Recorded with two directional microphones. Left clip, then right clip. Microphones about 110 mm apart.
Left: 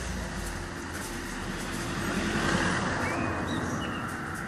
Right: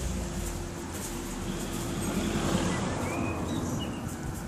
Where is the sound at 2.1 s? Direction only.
5° left (ahead or behind).